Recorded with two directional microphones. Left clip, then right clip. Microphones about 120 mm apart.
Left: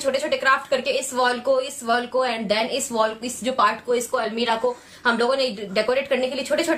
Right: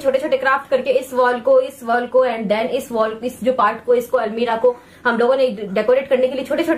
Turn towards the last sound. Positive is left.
turn(degrees=15)  # may be behind; listen again after turning